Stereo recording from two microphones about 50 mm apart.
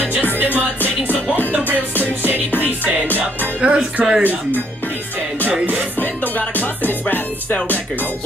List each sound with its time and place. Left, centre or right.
3.6 s speech: centre
5.9 s music: left